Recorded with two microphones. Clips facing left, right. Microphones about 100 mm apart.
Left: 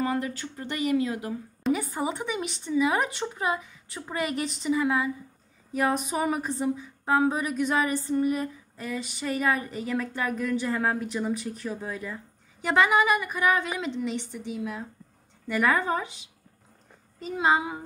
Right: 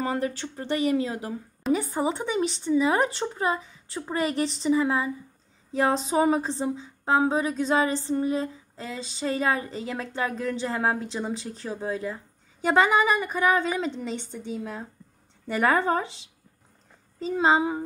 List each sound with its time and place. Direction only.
0.0 s a woman's voice: 30° right (ahead or behind)